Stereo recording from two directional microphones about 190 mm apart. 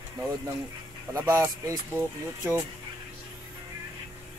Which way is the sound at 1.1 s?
10° right (ahead or behind).